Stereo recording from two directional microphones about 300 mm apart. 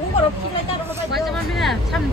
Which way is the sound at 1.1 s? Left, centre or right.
Centre.